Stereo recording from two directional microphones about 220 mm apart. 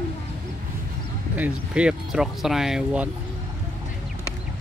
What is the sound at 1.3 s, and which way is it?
Speech, 5° right (ahead or behind).